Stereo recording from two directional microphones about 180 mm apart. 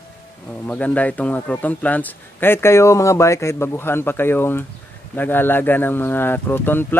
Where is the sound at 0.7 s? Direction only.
10° left (ahead or behind).